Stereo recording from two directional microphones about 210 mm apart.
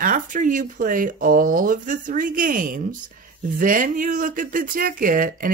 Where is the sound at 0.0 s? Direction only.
40° right (ahead or behind).